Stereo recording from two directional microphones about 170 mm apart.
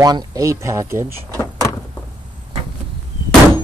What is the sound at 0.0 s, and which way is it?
Speech, 25° right (ahead or behind).